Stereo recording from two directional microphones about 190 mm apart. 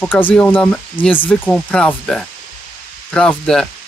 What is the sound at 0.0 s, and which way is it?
Speech, 10° left (ahead or behind).